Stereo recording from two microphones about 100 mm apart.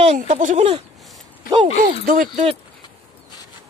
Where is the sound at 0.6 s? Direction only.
90° right.